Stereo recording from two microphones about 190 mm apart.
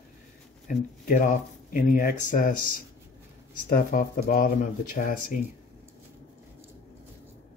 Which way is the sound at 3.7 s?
45° left (ahead or behind).